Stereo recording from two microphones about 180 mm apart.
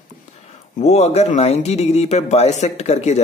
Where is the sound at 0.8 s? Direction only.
35° left (ahead or behind).